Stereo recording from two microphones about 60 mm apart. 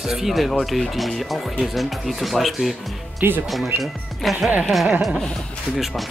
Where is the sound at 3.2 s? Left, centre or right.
Right.